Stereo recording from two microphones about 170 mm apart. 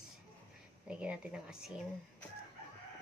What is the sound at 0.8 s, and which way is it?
Speech, 5° right (ahead or behind).